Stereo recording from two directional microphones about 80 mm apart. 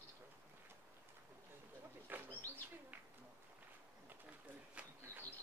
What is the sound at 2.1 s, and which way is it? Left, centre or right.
Bird, right.